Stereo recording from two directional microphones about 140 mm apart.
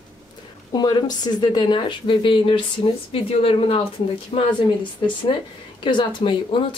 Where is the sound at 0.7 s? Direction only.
30° left (ahead or behind).